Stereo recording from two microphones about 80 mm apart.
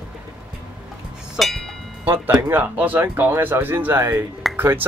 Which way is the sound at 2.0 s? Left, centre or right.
Right.